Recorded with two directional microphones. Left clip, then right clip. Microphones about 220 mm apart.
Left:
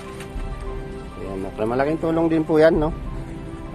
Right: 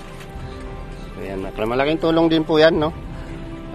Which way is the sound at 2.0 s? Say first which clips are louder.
Right 4 dB; 10° right (ahead or behind).